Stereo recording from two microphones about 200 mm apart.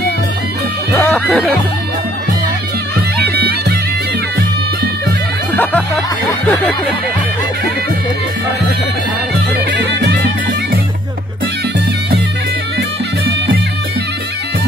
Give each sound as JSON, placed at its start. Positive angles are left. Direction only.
{"t": 0.9, "sound": "music", "side_deg": 10}
{"t": 3.3, "sound": "bagpipes", "side_deg": -55}
{"t": 5.5, "sound": "music", "side_deg": 10}
{"t": 6.4, "sound": "a sound", "side_deg": 10}
{"t": 9.7, "sound": "bagpipes", "side_deg": -60}